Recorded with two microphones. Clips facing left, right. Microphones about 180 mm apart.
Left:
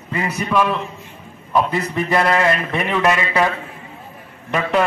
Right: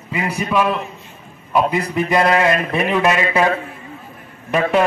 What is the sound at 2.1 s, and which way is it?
Speech, 20° right (ahead or behind).